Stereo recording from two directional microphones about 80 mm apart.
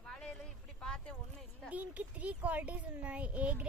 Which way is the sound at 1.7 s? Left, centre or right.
Centre.